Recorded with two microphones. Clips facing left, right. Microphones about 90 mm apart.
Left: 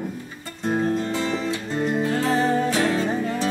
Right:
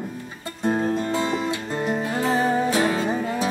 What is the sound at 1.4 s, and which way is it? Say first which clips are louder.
Music: even; 15° right (ahead or behind).